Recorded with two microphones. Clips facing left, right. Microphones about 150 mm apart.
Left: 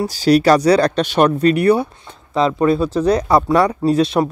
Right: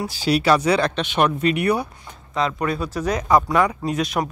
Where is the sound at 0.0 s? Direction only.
40° left (ahead or behind).